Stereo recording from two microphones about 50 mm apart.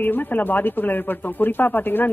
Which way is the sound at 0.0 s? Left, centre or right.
Left.